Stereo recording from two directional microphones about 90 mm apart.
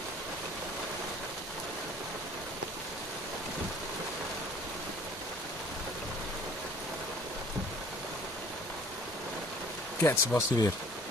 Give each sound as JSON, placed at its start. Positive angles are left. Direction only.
{"t": 10.0, "sound": "speech", "side_deg": 35}